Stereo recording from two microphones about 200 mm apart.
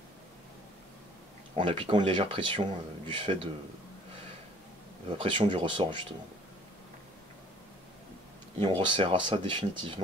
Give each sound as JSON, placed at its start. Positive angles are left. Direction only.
{"t": 1.5, "sound": "speech", "side_deg": -25}
{"t": 5.0, "sound": "speech", "side_deg": -25}
{"t": 8.6, "sound": "speech", "side_deg": -25}